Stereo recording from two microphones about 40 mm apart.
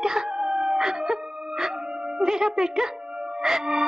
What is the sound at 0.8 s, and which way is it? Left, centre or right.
Music, centre.